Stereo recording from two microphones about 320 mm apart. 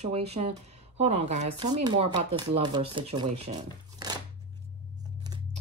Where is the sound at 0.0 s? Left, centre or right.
Centre.